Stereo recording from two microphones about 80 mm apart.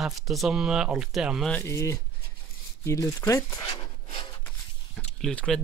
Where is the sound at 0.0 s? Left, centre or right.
Centre.